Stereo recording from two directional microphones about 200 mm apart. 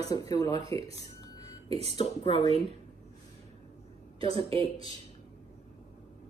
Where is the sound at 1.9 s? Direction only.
20° left (ahead or behind).